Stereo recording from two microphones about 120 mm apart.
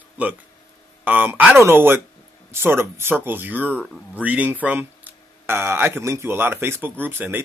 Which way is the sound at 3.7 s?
10° left (ahead or behind).